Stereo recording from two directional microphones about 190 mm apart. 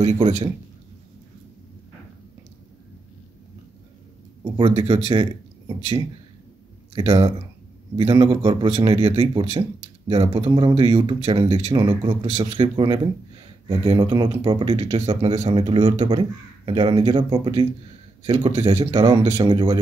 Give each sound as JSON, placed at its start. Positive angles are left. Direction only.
{"t": 0.0, "sound": "a man's voice", "side_deg": -35}
{"t": 4.6, "sound": "a man's voice", "side_deg": -30}
{"t": 7.0, "sound": "a man's voice", "side_deg": -25}